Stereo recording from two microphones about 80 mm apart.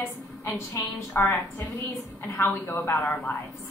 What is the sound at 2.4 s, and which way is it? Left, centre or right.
Speech, left.